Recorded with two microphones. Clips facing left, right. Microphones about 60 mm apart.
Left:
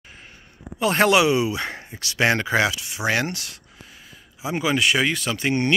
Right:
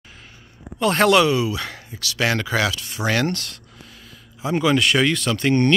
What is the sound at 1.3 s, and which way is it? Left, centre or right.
Speech, left.